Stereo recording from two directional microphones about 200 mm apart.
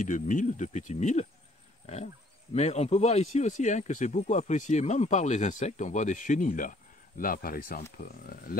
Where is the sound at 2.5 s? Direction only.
35° left (ahead or behind).